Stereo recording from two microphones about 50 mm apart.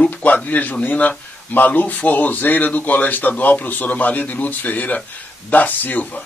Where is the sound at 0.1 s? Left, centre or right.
Left.